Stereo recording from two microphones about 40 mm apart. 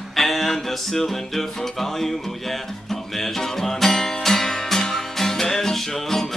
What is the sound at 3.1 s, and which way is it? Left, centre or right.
Music, centre.